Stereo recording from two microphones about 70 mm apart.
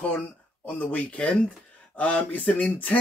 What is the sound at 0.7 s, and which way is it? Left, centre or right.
Speech, left.